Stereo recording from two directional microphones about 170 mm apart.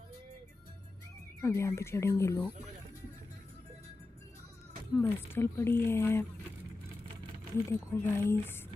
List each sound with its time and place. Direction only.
1.4 s speech: 15° left (ahead or behind)
4.9 s speech: 15° left (ahead or behind)
7.9 s speech: 15° left (ahead or behind)